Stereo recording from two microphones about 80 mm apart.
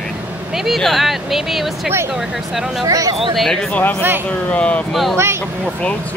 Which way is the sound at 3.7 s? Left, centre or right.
Centre.